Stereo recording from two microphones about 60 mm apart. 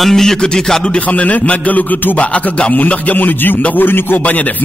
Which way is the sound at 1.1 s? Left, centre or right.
Left.